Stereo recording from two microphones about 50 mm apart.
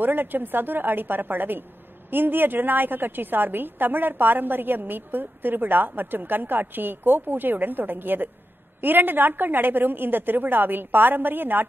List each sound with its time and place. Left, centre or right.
0.0 s a woman's voice: right